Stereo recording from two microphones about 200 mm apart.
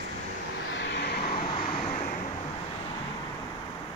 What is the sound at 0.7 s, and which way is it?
Vehicle, 60° left (ahead or behind).